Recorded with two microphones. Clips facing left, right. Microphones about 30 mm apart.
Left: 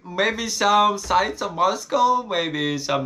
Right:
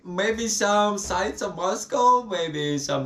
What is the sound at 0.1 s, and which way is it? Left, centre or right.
Speech, left.